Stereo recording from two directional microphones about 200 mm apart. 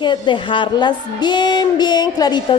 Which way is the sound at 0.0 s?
25° left (ahead or behind).